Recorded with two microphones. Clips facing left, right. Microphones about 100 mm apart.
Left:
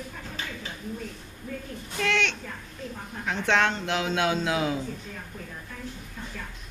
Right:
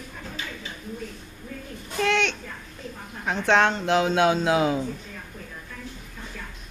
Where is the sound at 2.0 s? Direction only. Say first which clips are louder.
Right 4 dB; 20° right (ahead or behind).